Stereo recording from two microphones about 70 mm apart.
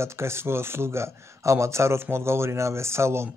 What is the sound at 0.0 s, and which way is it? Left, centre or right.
Speech, right.